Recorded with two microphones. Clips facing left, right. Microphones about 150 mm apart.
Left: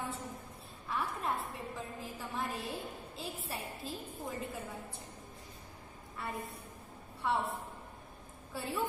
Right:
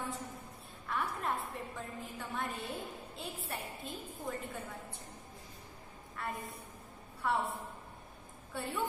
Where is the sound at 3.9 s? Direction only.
30° left (ahead or behind).